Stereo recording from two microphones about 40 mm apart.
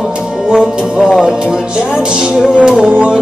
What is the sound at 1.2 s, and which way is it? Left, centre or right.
Speech, centre.